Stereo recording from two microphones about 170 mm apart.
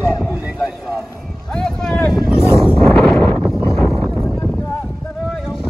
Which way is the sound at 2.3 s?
15° left (ahead or behind).